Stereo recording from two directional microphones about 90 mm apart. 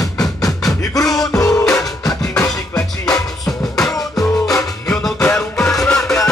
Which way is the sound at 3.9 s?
40° left (ahead or behind).